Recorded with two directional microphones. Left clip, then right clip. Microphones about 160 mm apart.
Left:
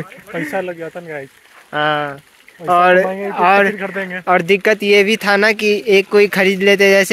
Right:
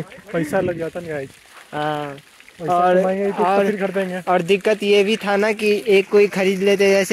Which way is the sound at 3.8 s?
45° right (ahead or behind).